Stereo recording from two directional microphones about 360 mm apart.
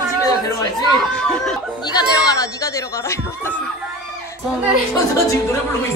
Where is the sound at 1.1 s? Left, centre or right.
Centre.